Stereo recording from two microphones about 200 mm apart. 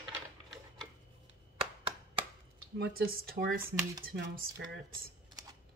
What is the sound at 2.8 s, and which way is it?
Speech, 50° right (ahead or behind).